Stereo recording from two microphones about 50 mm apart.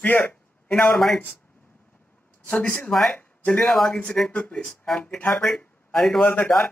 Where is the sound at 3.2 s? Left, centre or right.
Left.